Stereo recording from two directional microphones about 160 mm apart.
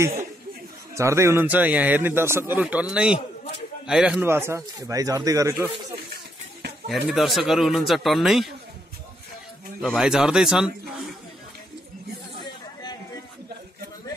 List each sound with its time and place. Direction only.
0.9 s a man's voice: 20° right (ahead or behind)
7.1 s speech: centre (ahead or behind)
9.8 s speech: 5° right (ahead or behind)